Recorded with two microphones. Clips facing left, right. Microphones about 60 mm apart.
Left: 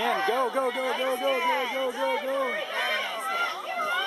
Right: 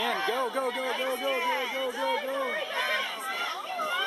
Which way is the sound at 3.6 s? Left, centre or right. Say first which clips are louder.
Left 2 dB; left.